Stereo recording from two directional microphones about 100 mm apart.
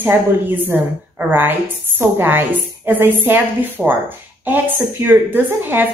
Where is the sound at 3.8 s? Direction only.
10° right (ahead or behind).